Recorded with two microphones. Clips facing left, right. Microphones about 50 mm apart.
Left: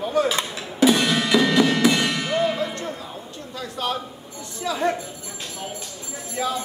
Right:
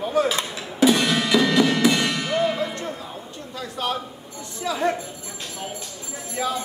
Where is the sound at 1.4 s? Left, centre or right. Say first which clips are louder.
Even; centre.